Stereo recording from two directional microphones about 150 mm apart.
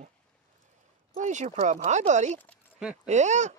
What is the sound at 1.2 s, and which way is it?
Speech, 55° right (ahead or behind).